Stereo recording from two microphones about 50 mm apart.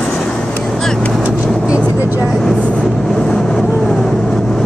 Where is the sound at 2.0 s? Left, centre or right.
Right.